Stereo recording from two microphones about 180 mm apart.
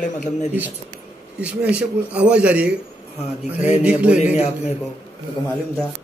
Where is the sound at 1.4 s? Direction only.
5° right (ahead or behind).